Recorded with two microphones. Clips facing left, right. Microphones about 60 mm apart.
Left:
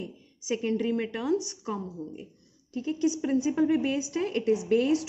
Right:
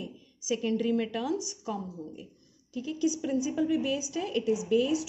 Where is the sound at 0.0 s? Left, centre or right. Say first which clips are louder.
Left 2 dB; left.